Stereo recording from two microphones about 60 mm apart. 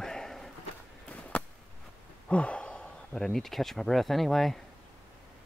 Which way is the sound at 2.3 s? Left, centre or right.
Centre.